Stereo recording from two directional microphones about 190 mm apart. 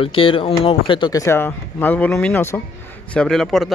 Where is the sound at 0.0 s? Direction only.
30° left (ahead or behind).